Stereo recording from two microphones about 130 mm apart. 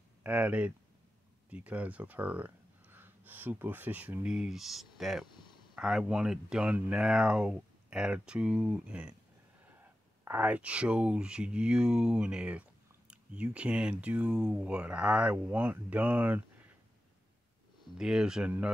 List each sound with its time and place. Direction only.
0.2 s speech: 10° right (ahead or behind)
5.3 s a sound: 35° left (ahead or behind)
5.8 s speech: 5° right (ahead or behind)
10.2 s speech: 10° right (ahead or behind)
17.9 s speech: 5° right (ahead or behind)